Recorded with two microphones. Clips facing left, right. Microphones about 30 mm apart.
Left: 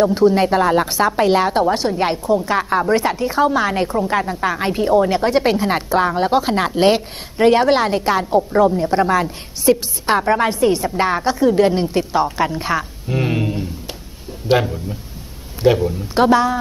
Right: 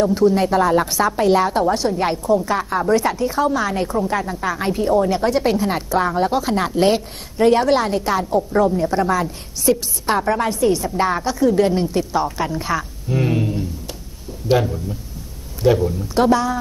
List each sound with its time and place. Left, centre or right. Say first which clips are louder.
0.0 s a woman's voice: left 2 dB; left